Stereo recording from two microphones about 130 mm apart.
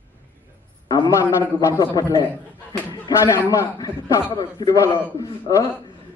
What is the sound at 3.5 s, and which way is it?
A man's voice, 30° left (ahead or behind).